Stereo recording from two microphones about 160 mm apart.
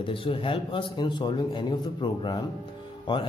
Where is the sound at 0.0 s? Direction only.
35° left (ahead or behind).